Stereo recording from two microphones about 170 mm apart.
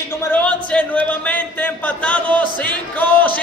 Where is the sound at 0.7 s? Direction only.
10° left (ahead or behind).